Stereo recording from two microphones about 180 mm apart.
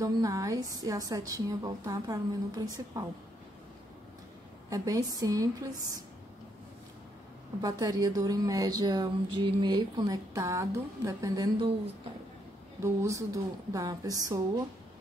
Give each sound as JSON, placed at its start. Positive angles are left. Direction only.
{"t": 0.0, "sound": "speech", "side_deg": -20}
{"t": 4.6, "sound": "speech", "side_deg": -20}
{"t": 7.6, "sound": "speech", "side_deg": -20}
{"t": 12.8, "sound": "speech", "side_deg": -15}